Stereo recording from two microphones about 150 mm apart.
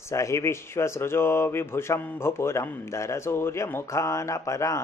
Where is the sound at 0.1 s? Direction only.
20° left (ahead or behind).